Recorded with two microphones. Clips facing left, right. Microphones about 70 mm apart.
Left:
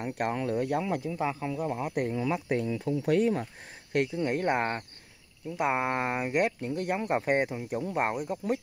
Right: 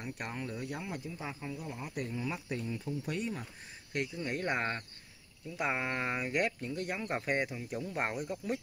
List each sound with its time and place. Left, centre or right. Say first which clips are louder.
0.0 s speech: left 10 dB; left
3.9 s speech: left 9 dB; left
4.3 s speech: left 6 dB; left